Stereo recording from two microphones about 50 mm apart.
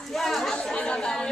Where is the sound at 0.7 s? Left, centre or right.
Centre.